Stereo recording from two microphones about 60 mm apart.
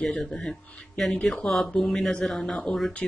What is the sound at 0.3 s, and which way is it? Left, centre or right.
Speech, centre.